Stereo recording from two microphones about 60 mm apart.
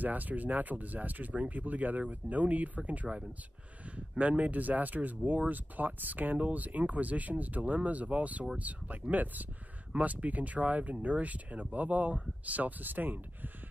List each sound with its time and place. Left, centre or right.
0.0 s speech: right